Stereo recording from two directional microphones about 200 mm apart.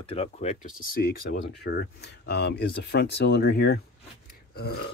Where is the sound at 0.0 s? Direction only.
30° left (ahead or behind).